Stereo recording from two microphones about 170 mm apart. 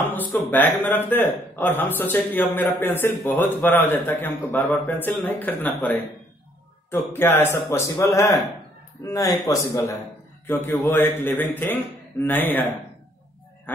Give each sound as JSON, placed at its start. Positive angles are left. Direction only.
{"t": 0.0, "sound": "a man's voice", "side_deg": 10}